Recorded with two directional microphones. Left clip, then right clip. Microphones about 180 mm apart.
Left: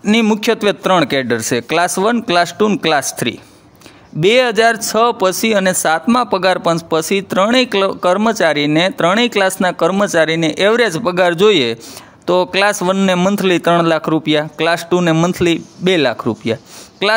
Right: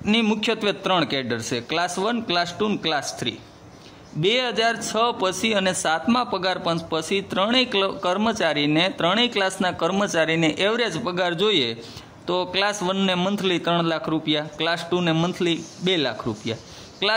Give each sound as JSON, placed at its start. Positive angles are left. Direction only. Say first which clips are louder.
{"t": 0.0, "sound": "a man's voice", "louder": "left 8 dB", "side_deg": 35}